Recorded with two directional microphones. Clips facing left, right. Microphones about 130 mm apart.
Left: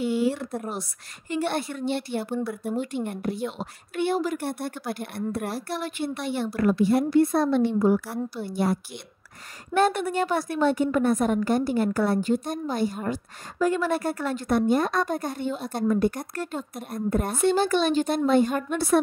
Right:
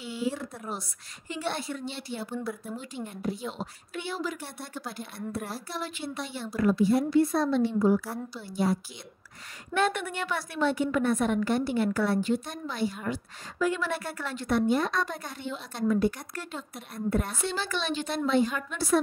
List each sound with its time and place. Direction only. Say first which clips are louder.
0.0 s a woman's voice: left 8 dB; 60° left (ahead or behind)
9.8 s a woman's voice: left 6 dB; 40° left (ahead or behind); by 18.9 s 55° left (ahead or behind)